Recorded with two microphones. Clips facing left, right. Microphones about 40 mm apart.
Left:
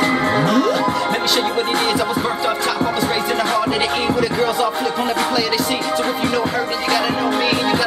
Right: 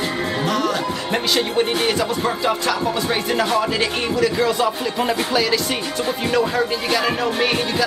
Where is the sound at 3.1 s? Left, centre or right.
Centre.